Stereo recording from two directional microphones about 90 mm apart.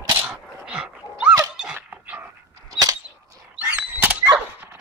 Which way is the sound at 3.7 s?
15° right (ahead or behind).